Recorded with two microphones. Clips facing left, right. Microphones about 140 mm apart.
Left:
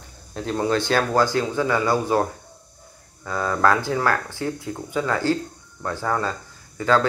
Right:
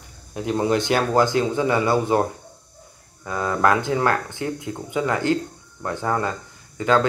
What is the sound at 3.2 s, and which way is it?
Speech, 20° right (ahead or behind).